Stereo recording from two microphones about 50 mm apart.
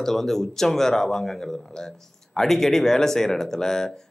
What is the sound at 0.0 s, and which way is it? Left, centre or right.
Speech, centre.